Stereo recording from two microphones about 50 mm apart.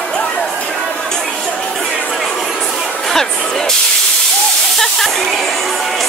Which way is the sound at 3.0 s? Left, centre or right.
Centre.